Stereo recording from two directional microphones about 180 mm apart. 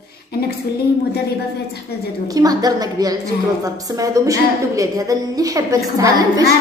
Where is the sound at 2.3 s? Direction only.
20° right (ahead or behind).